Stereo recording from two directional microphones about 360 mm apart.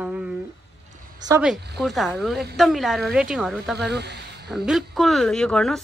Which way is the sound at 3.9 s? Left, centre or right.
Right.